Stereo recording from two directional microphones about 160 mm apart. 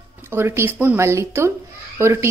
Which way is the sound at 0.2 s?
15° right (ahead or behind).